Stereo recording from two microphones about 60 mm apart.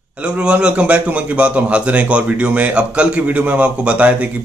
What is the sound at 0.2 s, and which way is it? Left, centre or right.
A man's voice, centre.